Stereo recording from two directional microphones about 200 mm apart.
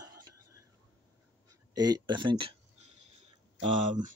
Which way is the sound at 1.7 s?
20° right (ahead or behind).